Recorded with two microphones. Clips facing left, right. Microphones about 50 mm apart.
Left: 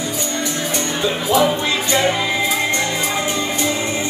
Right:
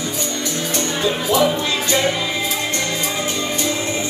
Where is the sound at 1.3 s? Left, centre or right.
Centre.